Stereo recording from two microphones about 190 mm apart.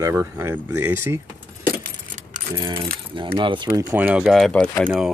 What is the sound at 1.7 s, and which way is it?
Keys jangling, 45° right (ahead or behind).